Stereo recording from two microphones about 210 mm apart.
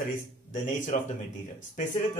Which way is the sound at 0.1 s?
40° left (ahead or behind).